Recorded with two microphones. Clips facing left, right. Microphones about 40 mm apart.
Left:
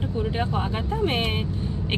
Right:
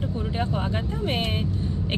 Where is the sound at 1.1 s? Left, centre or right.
Centre.